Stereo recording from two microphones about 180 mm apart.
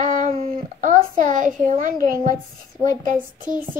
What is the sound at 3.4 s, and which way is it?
Speech, 50° right (ahead or behind).